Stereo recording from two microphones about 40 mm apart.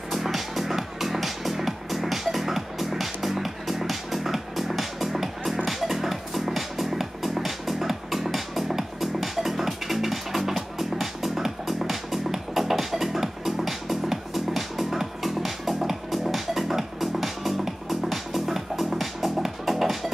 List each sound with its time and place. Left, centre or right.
0.1 s music: centre